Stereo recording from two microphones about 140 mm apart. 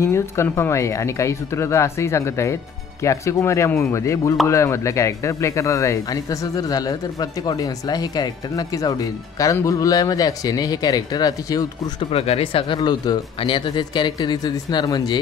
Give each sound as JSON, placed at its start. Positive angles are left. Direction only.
{"t": 0.0, "sound": "speech", "side_deg": 20}
{"t": 12.1, "sound": "speech", "side_deg": 45}